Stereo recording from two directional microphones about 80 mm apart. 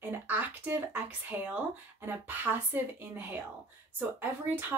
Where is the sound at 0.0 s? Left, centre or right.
Right.